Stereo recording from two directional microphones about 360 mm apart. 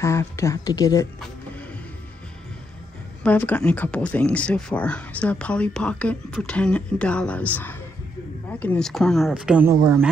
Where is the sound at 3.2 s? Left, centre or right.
Centre.